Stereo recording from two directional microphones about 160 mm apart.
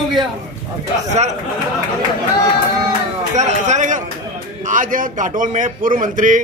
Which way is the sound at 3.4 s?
50° right (ahead or behind).